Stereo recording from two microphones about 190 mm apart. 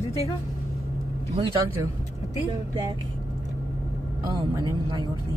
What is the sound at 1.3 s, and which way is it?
Speech, 25° right (ahead or behind).